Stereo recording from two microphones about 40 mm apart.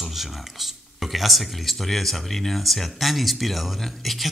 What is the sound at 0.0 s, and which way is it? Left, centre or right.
Speech, centre.